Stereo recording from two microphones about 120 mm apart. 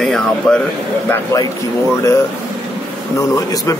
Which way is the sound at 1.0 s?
25° left (ahead or behind).